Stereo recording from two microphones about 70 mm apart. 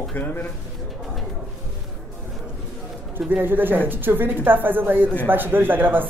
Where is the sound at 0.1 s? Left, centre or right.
Left.